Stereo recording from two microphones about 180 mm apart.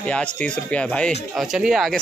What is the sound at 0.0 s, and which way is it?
Speech, 5° left (ahead or behind).